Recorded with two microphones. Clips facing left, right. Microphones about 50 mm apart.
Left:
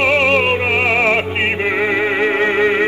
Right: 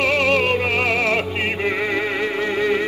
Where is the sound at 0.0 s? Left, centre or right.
Left.